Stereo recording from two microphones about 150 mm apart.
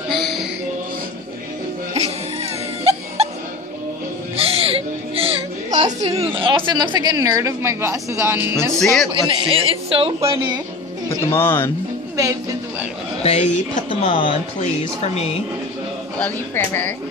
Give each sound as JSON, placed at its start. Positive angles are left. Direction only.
{"t": 0.1, "sound": "music", "side_deg": 0}
{"t": 2.0, "sound": "laughter", "side_deg": -45}
{"t": 4.4, "sound": "music", "side_deg": -40}
{"t": 6.0, "sound": "a woman's voice", "side_deg": -40}
{"t": 8.7, "sound": "a man's voice", "side_deg": 0}
{"t": 9.1, "sound": "a woman's voice", "side_deg": -30}
{"t": 11.1, "sound": "speech", "side_deg": 15}
{"t": 13.2, "sound": "a woman's voice", "side_deg": 45}
{"t": 16.2, "sound": "speech", "side_deg": 15}